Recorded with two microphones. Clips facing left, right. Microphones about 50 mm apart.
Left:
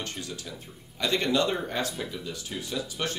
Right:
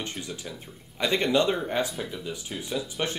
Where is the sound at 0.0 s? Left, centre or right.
Right.